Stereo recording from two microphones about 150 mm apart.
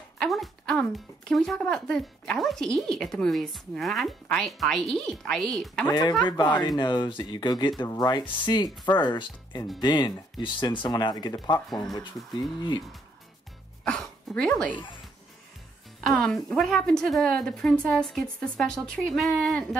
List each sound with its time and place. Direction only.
0.2 s speech: centre (ahead or behind)
5.9 s speech: 25° left (ahead or behind)
11.7 s speech: centre (ahead or behind)
13.8 s speech: 5° left (ahead or behind)
16.1 s speech: 5° left (ahead or behind)